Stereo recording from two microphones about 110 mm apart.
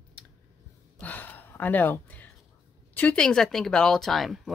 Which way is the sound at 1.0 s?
15° left (ahead or behind).